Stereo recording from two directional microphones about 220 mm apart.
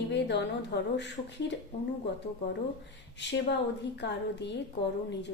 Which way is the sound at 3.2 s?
50° left (ahead or behind).